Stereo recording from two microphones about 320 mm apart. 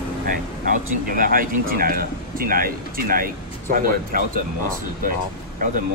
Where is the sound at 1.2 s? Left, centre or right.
Right.